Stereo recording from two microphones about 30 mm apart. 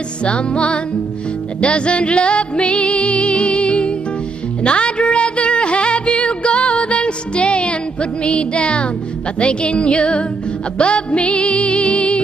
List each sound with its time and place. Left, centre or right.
0.2 s music: left